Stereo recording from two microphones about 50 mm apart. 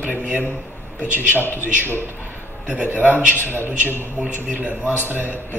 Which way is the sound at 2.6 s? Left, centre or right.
Right.